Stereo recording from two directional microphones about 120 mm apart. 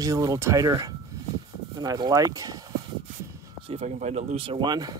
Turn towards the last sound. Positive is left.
turn(degrees=-35)  # may be behind; listen again after turning